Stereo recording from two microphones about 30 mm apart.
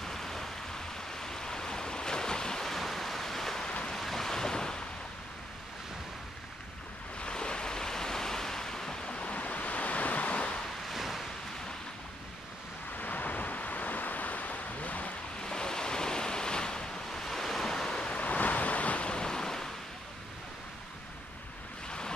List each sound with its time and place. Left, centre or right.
0.0 s a sound: centre
2.6 s waves: centre; by 4.8 s left
7.2 s waves: left; by 8.9 s centre
9.0 s waves: left
9.3 s waves: left
10.9 s a sound: centre
12.9 s waves: left
15.4 s waves: left
18.2 s waves: left
19.0 s waves: left